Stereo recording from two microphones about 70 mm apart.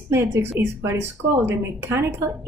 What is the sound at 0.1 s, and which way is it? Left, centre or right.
A woman's voice, right.